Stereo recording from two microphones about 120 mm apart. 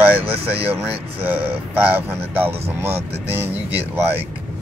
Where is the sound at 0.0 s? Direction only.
15° right (ahead or behind).